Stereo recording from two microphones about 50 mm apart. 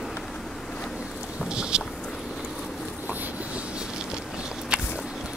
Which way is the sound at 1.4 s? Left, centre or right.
Centre.